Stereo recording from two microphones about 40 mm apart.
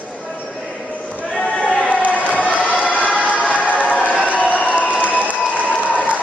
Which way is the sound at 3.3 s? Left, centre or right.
Left.